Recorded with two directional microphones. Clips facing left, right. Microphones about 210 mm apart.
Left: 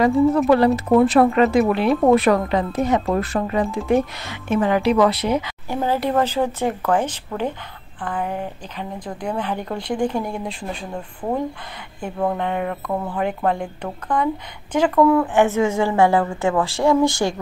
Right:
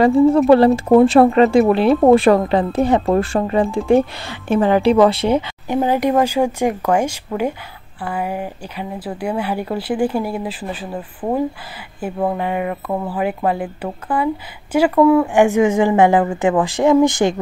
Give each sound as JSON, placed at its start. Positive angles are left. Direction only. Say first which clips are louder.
{"t": 0.5, "sound": "speech", "louder": "right 4 dB", "side_deg": -30}
{"t": 5.8, "sound": "speech", "louder": "right 4 dB", "side_deg": -15}